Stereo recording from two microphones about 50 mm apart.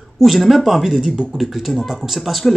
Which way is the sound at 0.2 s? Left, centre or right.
Centre.